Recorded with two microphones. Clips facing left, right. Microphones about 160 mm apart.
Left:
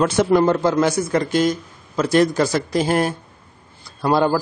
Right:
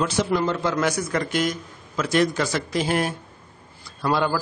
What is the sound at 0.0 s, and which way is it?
A man's voice, 50° left (ahead or behind).